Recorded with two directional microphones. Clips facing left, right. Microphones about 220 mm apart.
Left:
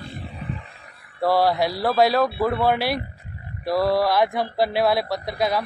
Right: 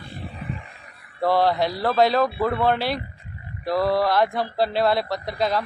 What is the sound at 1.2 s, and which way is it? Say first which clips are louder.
Speech: even; 10° left (ahead or behind).